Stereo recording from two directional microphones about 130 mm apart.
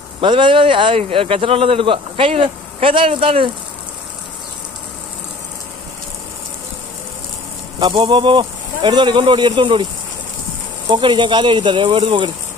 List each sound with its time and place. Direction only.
0.2 s speech: 40° right (ahead or behind)
7.8 s speech: 35° right (ahead or behind)
10.9 s speech: 35° right (ahead or behind)